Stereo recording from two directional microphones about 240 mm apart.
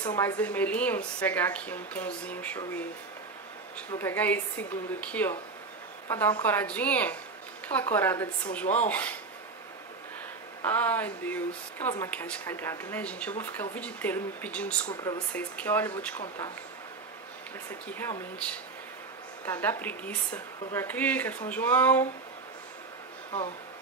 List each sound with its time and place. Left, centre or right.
0.0 s a woman's voice: centre
10.6 s a woman's voice: centre
17.8 s a woman's voice: centre